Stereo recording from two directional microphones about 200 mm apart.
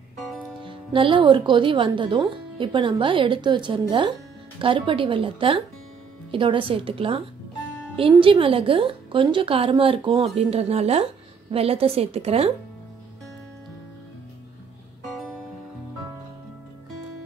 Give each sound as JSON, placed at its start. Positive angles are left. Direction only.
{"t": 0.7, "sound": "a woman's voice", "side_deg": -25}
{"t": 15.0, "sound": "music", "side_deg": 0}